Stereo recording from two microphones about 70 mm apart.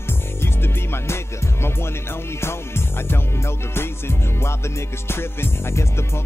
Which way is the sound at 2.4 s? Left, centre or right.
Left.